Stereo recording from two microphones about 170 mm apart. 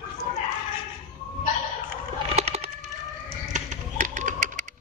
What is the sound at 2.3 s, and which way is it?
Bird, 40° right (ahead or behind).